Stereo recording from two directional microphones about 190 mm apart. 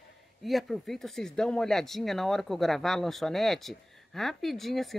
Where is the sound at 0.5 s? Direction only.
Centre (ahead or behind).